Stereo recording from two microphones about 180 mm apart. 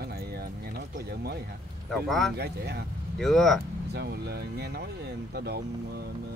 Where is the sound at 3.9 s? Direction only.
65° right (ahead or behind).